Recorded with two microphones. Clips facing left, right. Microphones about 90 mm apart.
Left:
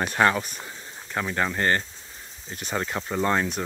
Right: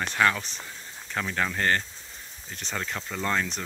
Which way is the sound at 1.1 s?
10° left (ahead or behind).